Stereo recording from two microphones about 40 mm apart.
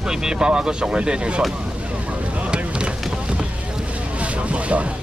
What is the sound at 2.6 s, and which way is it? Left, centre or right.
Boat, right.